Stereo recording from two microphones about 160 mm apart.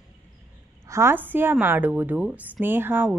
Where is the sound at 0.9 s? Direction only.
15° right (ahead or behind).